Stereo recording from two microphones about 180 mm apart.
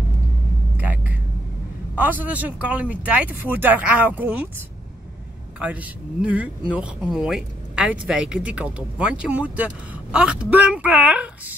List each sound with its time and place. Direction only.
2.0 s speech: 10° right (ahead or behind)
5.6 s speech: 5° right (ahead or behind)